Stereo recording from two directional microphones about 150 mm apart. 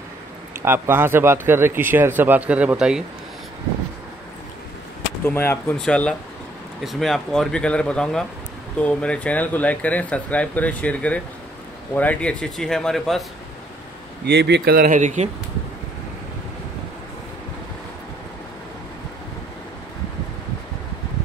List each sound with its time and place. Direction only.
0.6 s speech: 15° right (ahead or behind)
5.2 s speech: 15° left (ahead or behind)
14.2 s speech: 90° right; by 15.2 s 55° right (ahead or behind)